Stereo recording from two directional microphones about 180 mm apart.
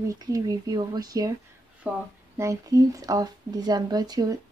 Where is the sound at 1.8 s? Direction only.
10° right (ahead or behind).